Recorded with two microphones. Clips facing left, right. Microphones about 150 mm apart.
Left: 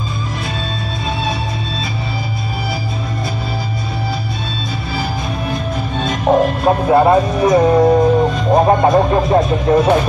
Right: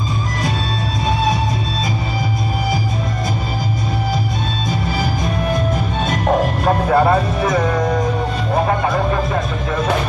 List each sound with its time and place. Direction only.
6.9 s music: 15° left (ahead or behind)
8.6 s music: 35° left (ahead or behind)